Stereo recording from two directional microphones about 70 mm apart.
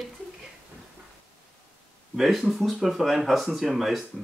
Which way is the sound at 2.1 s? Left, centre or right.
Centre.